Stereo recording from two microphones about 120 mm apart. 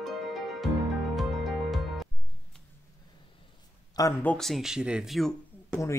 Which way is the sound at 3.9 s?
30° left (ahead or behind).